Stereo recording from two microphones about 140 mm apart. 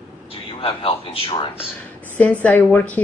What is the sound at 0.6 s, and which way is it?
Speech, 40° left (ahead or behind).